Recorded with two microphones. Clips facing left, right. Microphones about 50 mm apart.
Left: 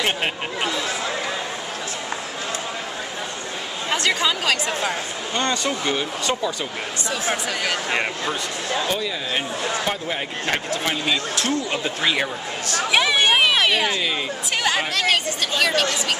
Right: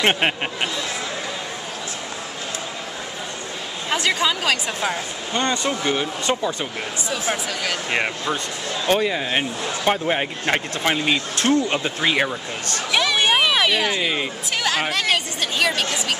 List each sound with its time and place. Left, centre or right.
0.0 s speech: right
3.9 s a woman's voice: centre
5.3 s a woman's voice: centre
7.2 s a woman's voice: centre
7.9 s a woman's voice: centre
8.8 s speech: right
12.0 s speech: centre
12.9 s speech: centre
13.2 s speech: centre
13.9 s speech: centre
14.6 s a woman's voice: centre